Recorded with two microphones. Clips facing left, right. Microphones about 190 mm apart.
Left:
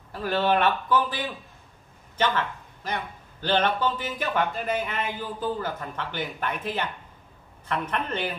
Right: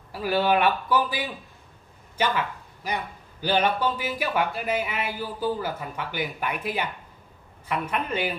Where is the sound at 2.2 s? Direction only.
10° right (ahead or behind).